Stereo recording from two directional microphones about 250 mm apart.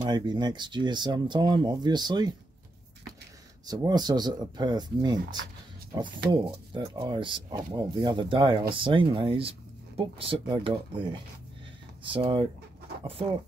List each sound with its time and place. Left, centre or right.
0.0 s speech: centre
3.6 s speech: centre